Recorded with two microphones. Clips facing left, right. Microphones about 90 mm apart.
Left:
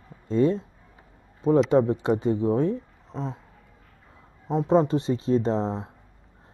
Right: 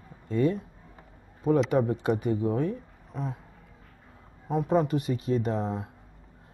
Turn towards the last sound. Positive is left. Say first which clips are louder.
# left 4 dB
turn(degrees=25)  # may be behind; listen again after turning